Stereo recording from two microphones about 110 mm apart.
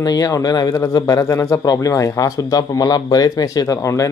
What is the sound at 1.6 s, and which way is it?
Speech, 35° left (ahead or behind).